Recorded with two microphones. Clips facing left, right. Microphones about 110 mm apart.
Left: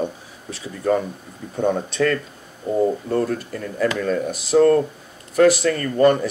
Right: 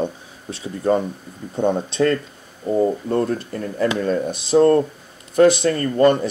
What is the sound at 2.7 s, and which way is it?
Speech, 5° right (ahead or behind).